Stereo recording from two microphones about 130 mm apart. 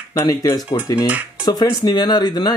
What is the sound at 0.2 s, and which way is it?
Speech, 25° left (ahead or behind).